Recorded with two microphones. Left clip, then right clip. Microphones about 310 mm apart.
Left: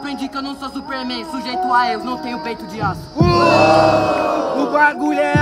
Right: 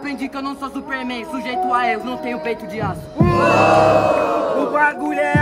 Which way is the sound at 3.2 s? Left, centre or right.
Left.